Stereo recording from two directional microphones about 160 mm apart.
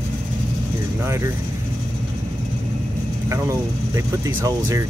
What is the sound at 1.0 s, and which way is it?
Speech, 15° right (ahead or behind).